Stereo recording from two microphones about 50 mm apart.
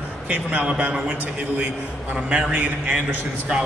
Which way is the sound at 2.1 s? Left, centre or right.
Right.